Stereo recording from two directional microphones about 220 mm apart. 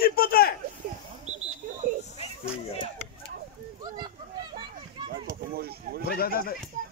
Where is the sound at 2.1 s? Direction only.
30° left (ahead or behind).